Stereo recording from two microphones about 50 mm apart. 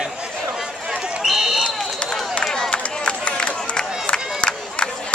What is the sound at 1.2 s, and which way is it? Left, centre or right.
Run, centre.